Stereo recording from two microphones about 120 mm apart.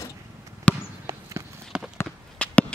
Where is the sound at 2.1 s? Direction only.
10° left (ahead or behind).